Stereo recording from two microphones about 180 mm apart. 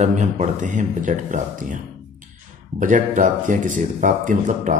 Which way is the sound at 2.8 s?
45° right (ahead or behind).